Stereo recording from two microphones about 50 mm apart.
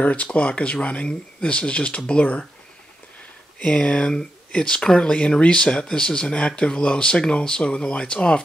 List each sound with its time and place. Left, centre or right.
0.0 s speech: left
3.5 s speech: left